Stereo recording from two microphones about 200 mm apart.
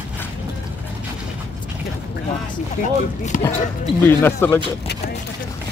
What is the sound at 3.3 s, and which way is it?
Speech, 40° left (ahead or behind).